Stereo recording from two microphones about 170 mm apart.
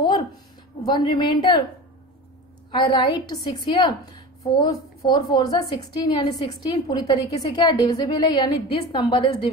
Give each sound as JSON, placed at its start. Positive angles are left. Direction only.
{"t": 0.8, "sound": "a woman's voice", "side_deg": 25}
{"t": 2.7, "sound": "a woman's voice", "side_deg": 25}